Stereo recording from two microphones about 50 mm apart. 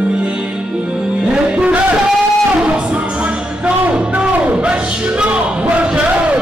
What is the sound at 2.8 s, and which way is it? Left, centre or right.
Music, right.